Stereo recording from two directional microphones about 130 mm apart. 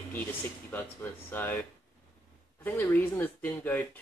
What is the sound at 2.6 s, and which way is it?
Speech, 15° left (ahead or behind).